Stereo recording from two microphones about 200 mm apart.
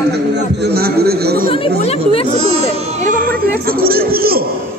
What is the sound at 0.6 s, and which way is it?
Speech, 50° right (ahead or behind).